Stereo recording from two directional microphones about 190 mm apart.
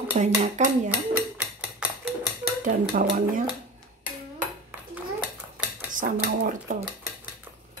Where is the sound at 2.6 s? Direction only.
45° right (ahead or behind).